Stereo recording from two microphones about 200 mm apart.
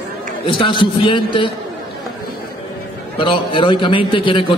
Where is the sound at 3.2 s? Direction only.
25° left (ahead or behind).